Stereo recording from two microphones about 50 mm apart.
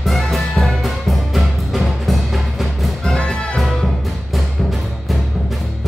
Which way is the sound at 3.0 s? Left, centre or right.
Centre.